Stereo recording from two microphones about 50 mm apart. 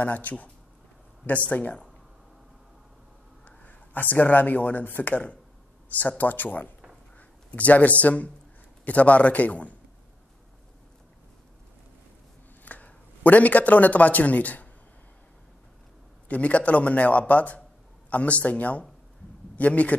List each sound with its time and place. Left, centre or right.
0.0 s speech: left
3.4 s speech: left
7.2 s a sound: left
8.0 s a man's voice: left
12.6 s a man's voice: left
16.3 s a man's voice: left